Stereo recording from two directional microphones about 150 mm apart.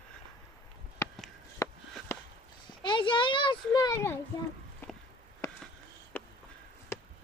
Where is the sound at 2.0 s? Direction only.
Centre (ahead or behind).